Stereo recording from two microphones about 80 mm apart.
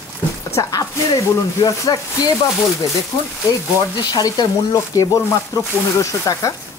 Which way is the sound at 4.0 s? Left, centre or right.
Left.